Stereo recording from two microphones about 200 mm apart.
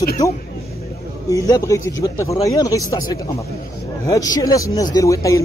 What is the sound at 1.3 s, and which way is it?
Speech, 20° left (ahead or behind).